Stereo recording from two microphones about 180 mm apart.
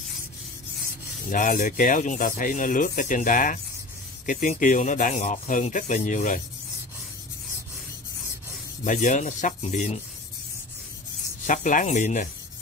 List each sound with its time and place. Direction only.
1.3 s speech: 45° left (ahead or behind)
8.8 s speech: 45° left (ahead or behind)
11.4 s speech: 45° left (ahead or behind)